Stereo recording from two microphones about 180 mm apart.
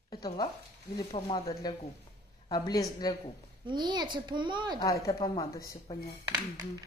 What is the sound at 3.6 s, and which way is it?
Child singing, 25° right (ahead or behind).